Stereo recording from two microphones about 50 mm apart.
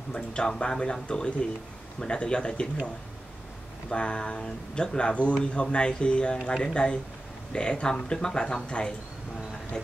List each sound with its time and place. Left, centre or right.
0.1 s speech: centre
3.9 s speech: left